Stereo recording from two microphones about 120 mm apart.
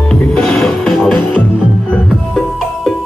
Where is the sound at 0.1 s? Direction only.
5° left (ahead or behind).